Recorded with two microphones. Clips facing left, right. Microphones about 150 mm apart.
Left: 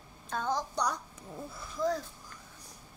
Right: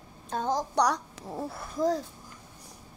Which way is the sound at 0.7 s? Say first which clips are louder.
Right 7 dB; 85° right.